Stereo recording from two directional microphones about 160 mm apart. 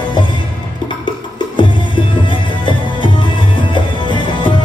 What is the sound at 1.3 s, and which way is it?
Music, 30° left (ahead or behind).